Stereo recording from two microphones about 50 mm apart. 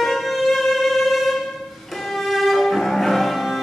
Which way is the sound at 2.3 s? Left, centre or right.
Centre.